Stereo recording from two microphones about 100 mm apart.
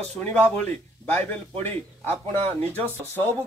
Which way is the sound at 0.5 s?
15° left (ahead or behind).